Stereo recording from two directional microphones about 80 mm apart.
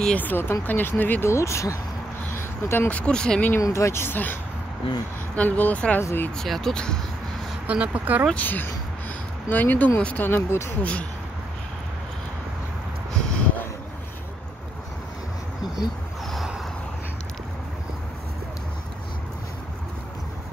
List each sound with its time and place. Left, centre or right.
0.0 s speech: centre
1.3 s speech: left
2.3 s a sound: left
2.9 s speech: centre
3.6 s speech: left; by 6.0 s centre
6.3 s speech: centre
7.6 s speech: centre
8.4 s speech: left